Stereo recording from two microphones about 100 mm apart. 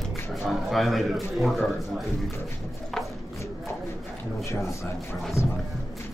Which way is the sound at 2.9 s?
5° left (ahead or behind).